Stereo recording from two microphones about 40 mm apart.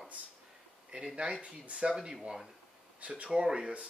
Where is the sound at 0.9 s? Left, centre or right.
Right.